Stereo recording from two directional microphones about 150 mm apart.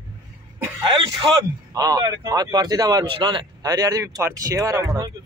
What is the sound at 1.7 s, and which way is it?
Speech, 25° right (ahead or behind).